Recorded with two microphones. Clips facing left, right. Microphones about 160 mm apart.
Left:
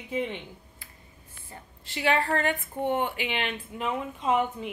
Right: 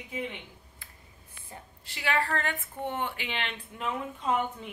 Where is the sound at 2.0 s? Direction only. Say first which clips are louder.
Left 4 dB; 25° left (ahead or behind); by 4.7 s 5° left (ahead or behind).